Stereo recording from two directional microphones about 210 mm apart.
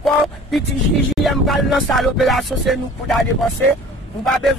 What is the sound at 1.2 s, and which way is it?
A man's voice, centre (ahead or behind).